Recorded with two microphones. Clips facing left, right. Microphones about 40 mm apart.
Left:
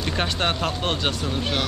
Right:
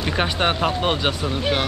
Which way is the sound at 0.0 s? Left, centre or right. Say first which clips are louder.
Right 3 dB; centre.